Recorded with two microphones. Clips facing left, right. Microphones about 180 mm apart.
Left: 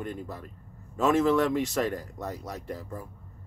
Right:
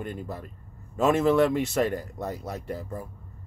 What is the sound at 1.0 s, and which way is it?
Speech, 10° right (ahead or behind).